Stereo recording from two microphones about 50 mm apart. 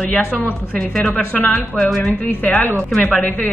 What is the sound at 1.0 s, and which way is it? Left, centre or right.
A woman's voice, left.